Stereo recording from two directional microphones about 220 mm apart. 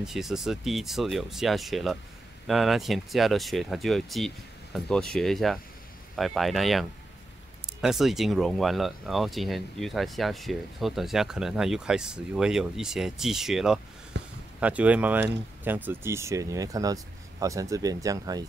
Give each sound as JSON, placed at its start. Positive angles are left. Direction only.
{"t": 0.0, "sound": "speech", "side_deg": 0}
{"t": 14.1, "sound": "a sound", "side_deg": -55}
{"t": 14.6, "sound": "speech", "side_deg": -5}